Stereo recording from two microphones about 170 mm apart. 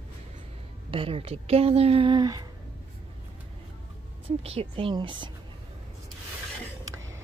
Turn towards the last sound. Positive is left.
turn(degrees=-30)  # may be behind; listen again after turning